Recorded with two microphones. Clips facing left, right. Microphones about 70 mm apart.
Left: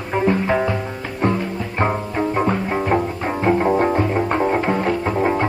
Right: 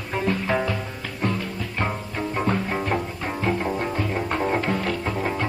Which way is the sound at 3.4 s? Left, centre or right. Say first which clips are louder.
Left 9 dB; left.